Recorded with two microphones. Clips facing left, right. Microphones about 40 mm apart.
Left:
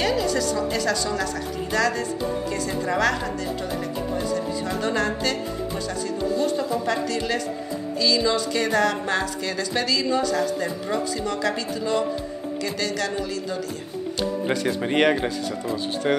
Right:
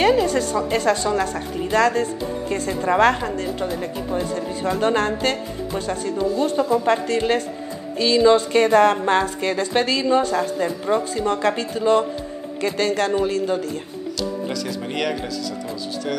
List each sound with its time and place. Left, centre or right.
0.0 s a woman's voice: right
4.7 s a woman's voice: right
14.5 s speech: left